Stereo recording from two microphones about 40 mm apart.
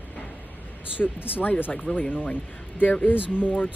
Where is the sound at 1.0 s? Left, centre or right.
Left.